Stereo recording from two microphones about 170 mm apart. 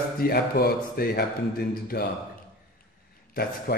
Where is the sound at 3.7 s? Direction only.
65° left (ahead or behind).